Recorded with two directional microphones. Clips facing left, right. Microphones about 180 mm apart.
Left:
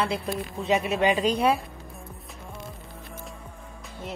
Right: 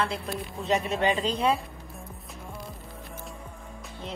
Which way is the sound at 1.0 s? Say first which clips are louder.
Left 3 dB; 15° left (ahead or behind).